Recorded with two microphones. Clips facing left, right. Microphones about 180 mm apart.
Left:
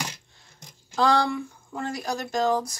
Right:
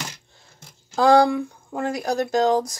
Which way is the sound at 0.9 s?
50° right (ahead or behind).